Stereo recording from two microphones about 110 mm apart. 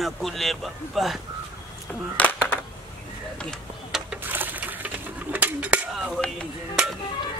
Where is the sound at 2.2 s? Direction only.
15° left (ahead or behind).